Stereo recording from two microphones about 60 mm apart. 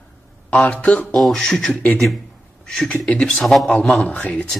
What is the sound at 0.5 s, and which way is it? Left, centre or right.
Speech, left.